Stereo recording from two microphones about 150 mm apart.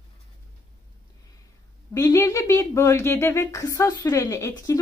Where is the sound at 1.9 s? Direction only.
20° left (ahead or behind).